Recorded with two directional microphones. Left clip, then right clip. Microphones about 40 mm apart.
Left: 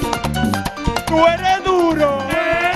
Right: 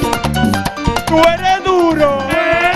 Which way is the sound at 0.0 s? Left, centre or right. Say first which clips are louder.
Right 4 dB; right.